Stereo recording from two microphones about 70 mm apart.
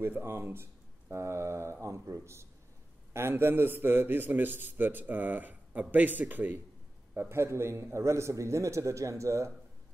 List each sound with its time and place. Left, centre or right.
0.0 s a man's voice: right
7.2 s a man's voice: right